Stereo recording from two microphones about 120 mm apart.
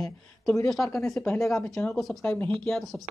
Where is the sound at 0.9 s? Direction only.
25° left (ahead or behind).